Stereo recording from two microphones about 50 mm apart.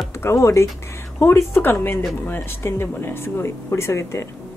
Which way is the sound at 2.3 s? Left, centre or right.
Left.